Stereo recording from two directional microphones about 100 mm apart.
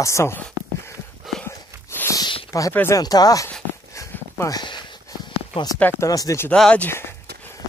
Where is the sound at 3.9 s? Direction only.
30° left (ahead or behind).